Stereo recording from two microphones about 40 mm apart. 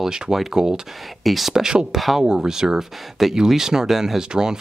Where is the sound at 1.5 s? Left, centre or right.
Centre.